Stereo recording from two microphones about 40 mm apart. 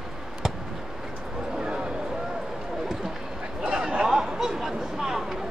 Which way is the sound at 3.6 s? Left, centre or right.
Centre.